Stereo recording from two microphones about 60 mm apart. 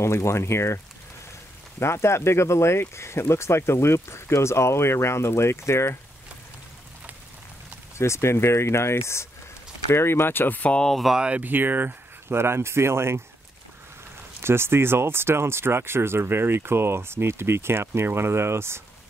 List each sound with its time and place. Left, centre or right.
0.0 s speech: left
1.8 s speech: left
8.0 s speech: left
10.7 s speech: centre
11.1 s speech: centre
11.4 s speech: right
14.4 s speech: right